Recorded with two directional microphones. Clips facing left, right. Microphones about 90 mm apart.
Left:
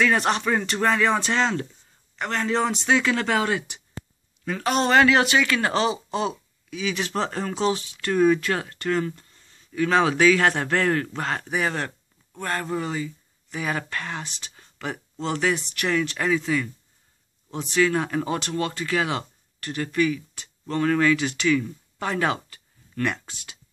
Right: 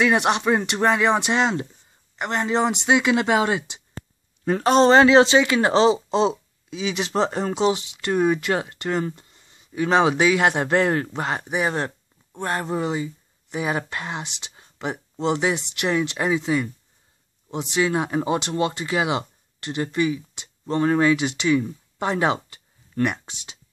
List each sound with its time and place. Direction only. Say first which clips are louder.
0.0 s speech: right 2 dB; 15° right (ahead or behind)
4.5 s speech: right 6 dB; 30° right (ahead or behind)